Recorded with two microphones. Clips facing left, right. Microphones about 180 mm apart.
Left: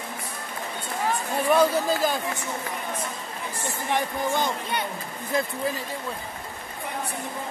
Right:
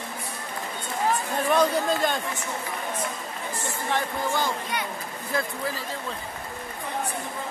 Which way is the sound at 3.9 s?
20° left (ahead or behind).